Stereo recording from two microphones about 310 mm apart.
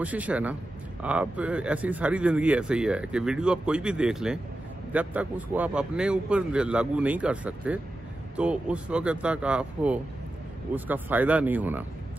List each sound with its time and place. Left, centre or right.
0.0 s speech: centre